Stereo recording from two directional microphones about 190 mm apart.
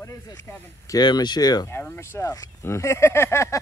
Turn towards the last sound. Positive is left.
turn(degrees=15)  # may be behind; listen again after turning